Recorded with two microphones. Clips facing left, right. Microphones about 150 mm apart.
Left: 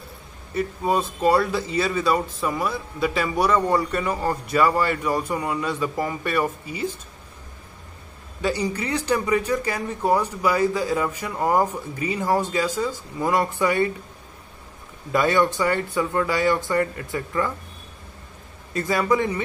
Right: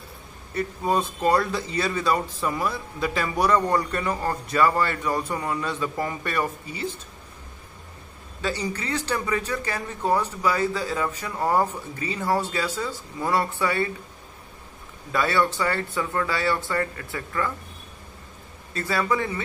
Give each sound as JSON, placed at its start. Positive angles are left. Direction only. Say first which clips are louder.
{"t": 0.6, "sound": "speech", "louder": "left 2 dB", "side_deg": 5}
{"t": 8.4, "sound": "speech", "louder": "left 4 dB", "side_deg": 10}
{"t": 15.1, "sound": "speech", "louder": "left 3 dB", "side_deg": 15}
{"t": 18.7, "sound": "speech", "louder": "left 4 dB", "side_deg": 15}